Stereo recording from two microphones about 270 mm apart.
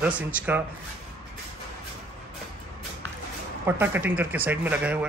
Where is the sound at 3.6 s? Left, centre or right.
Centre.